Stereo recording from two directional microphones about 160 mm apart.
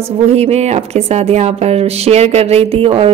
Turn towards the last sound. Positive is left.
turn(degrees=-35)  # may be behind; listen again after turning